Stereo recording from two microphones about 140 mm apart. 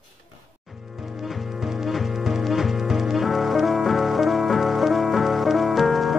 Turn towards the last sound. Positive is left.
turn(degrees=0)  # may be behind; listen again after turning